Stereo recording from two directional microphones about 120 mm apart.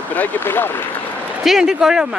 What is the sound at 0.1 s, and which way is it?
Speech, 15° left (ahead or behind).